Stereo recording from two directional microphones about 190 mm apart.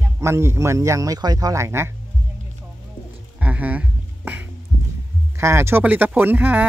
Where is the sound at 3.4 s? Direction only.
10° right (ahead or behind).